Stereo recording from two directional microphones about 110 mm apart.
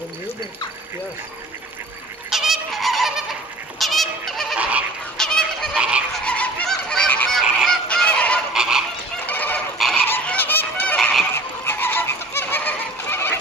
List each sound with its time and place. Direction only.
2.3 s goose: 5° right (ahead or behind)
4.6 s goose: 10° right (ahead or behind)
5.1 s goose: 5° left (ahead or behind)
5.8 s goose: 10° right (ahead or behind)
6.2 s goose: 10° left (ahead or behind)
8.5 s goose: 5° right (ahead or behind)
9.2 s goose: 15° left (ahead or behind)